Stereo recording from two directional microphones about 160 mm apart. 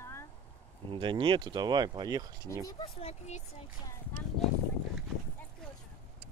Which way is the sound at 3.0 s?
40° left (ahead or behind).